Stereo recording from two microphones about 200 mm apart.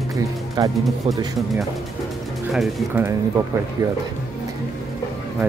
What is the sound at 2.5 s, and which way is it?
Speech, centre (ahead or behind).